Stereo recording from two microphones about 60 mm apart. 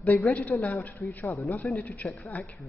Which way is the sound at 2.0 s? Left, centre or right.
Left.